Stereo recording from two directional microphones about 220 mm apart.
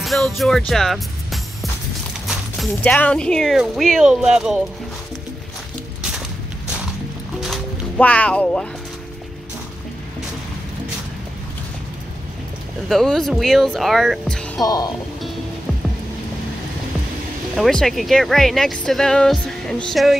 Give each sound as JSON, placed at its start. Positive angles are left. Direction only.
{"t": 0.0, "sound": "music", "side_deg": 0}
{"t": 2.2, "sound": "speech", "side_deg": 0}
{"t": 7.3, "sound": "music", "side_deg": 0}
{"t": 12.8, "sound": "speech", "side_deg": 0}
{"t": 14.6, "sound": "speech", "side_deg": 15}
{"t": 17.6, "sound": "speech", "side_deg": 0}